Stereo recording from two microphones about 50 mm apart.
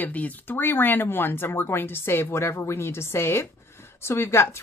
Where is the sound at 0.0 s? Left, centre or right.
Left.